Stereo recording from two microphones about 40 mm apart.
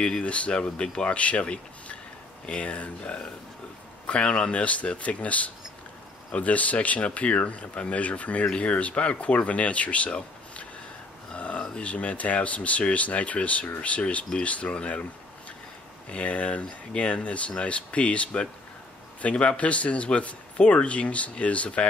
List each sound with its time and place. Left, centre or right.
0.2 s speech: left
11.3 s a sound: left
11.8 s speech: left
16.1 s speech: left